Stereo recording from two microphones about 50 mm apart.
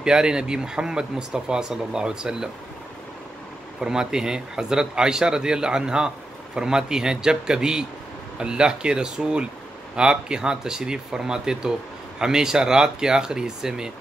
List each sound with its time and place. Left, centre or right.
0.0 s speech: centre
3.8 s speech: centre